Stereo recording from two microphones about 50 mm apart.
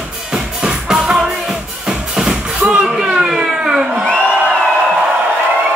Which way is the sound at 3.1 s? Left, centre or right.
Centre.